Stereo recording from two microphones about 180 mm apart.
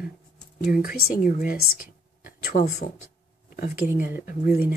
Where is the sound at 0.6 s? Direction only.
50° left (ahead or behind).